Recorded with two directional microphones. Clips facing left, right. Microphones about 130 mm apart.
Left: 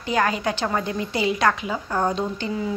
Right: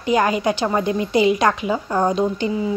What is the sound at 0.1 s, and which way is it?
A woman's voice, 15° right (ahead or behind).